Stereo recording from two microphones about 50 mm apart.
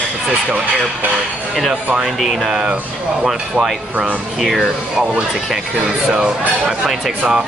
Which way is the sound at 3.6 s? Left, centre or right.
Centre.